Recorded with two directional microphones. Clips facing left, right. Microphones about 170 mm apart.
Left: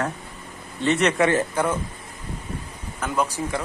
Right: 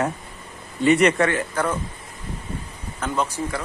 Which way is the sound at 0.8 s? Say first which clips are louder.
Right 4 dB; 5° right (ahead or behind).